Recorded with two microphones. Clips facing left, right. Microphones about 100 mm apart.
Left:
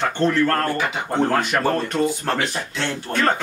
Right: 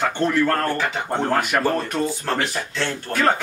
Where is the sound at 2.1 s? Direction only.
15° left (ahead or behind).